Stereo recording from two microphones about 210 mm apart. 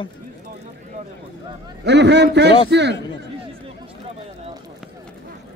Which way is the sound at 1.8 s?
55° right (ahead or behind).